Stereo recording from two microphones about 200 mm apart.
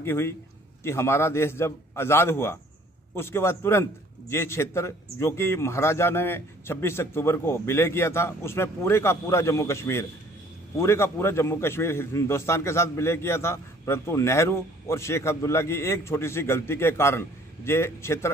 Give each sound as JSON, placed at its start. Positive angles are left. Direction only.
{"t": 0.0, "sound": "a man's voice", "side_deg": 10}